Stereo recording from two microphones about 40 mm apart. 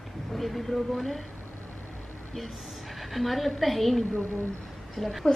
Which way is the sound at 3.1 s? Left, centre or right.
Centre.